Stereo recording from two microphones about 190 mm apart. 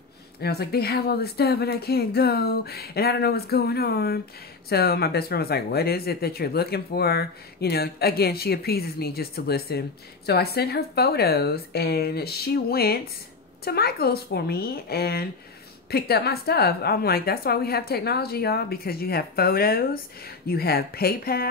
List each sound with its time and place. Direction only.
0.4 s speech: 55° left (ahead or behind)